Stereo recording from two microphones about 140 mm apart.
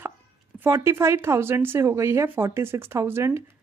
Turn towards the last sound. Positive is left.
turn(degrees=-20)  # may be behind; listen again after turning